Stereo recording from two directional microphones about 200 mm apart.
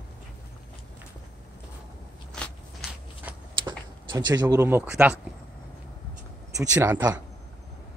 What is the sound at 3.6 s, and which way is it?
Speech, 20° right (ahead or behind).